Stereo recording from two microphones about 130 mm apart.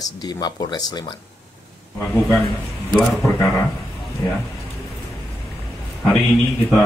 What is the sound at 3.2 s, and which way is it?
Speech, 15° left (ahead or behind).